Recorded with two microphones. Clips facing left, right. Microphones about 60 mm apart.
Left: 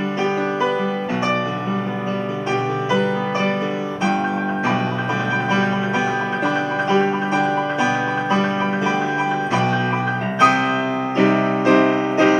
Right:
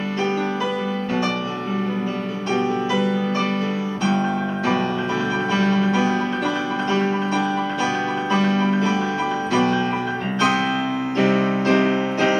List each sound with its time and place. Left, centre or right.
5.5 s music: centre
9.5 s music: centre